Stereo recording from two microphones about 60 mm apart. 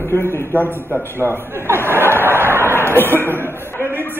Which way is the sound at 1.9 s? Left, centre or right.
Right.